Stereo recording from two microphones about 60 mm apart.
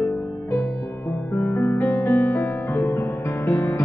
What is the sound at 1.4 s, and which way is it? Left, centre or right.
Music, left.